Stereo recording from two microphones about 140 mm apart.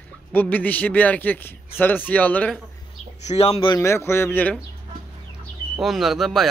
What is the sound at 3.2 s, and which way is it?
Speech, 45° left (ahead or behind).